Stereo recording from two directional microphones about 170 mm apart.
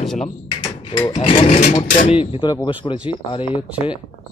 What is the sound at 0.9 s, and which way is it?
Speech, 25° left (ahead or behind).